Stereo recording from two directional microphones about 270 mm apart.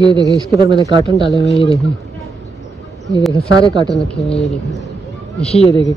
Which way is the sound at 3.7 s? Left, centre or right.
Centre.